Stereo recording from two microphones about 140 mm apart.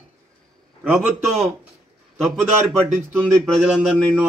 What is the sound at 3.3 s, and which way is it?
Speech, 5° left (ahead or behind).